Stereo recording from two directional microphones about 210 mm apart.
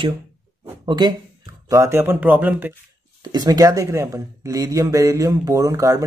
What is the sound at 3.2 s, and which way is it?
Speech, 20° right (ahead or behind).